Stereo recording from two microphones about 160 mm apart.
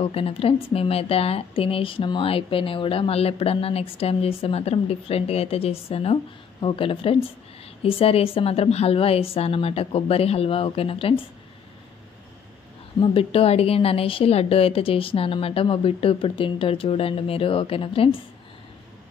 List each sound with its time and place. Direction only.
0.0 s speech: 35° left (ahead or behind)
13.0 s speech: 35° left (ahead or behind)